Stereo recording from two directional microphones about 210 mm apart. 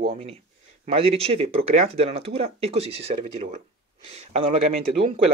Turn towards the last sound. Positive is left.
turn(degrees=-30)  # may be behind; listen again after turning